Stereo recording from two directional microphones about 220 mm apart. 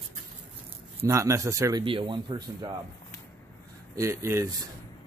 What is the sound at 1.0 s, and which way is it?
Speech, 15° right (ahead or behind).